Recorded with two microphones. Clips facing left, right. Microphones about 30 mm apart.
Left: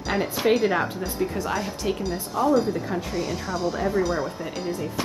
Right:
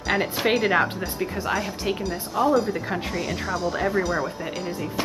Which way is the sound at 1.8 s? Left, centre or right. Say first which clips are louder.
Even; right.